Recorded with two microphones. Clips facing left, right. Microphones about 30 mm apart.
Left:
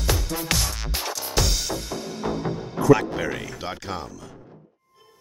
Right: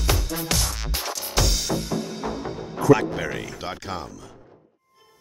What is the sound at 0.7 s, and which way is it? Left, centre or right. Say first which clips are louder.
Music: even; centre.